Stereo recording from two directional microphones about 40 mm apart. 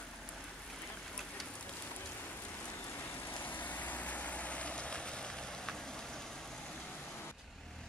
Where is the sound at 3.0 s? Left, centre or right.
Left.